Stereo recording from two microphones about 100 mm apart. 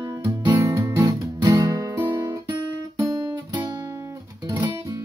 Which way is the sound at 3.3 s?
45° right (ahead or behind).